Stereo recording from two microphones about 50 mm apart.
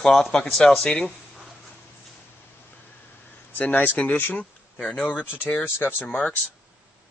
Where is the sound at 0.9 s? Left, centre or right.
Centre.